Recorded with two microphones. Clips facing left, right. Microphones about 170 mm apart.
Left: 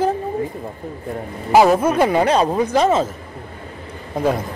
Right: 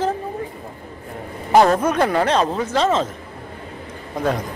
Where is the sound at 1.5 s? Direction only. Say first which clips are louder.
Left 1 dB; 5° left (ahead or behind).